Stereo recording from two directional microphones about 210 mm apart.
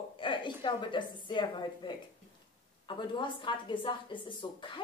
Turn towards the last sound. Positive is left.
turn(degrees=25)  # may be behind; listen again after turning